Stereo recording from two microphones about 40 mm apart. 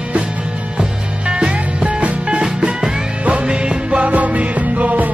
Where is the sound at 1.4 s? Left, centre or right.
Right.